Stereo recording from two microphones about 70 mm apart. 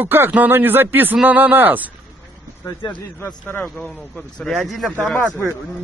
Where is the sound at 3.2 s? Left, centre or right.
Left.